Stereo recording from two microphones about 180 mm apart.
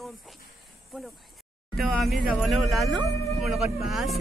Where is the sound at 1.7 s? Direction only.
Centre (ahead or behind).